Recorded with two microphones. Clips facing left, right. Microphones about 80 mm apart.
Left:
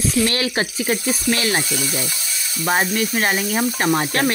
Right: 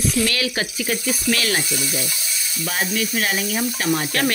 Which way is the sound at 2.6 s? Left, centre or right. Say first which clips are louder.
Left 5 dB; left.